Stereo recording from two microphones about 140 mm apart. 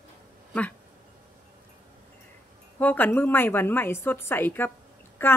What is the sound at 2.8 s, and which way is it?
A woman's voice, 15° left (ahead or behind).